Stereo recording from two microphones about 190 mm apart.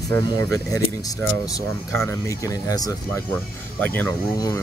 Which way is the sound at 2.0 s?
15° left (ahead or behind).